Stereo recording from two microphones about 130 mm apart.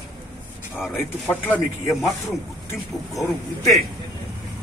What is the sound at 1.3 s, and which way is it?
Speech, 15° left (ahead or behind).